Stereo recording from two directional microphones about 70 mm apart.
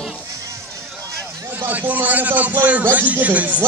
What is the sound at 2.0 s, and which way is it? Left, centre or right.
A man's voice, right.